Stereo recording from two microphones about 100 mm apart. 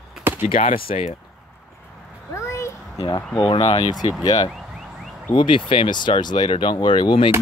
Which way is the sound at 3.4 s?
65° left (ahead or behind).